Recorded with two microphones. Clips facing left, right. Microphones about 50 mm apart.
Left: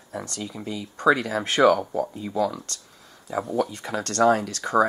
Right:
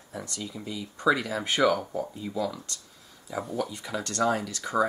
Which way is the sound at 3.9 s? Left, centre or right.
Left.